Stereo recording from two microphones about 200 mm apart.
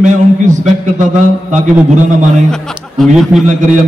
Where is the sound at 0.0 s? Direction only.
40° right (ahead or behind).